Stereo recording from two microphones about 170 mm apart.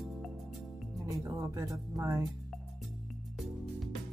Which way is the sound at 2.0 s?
20° right (ahead or behind).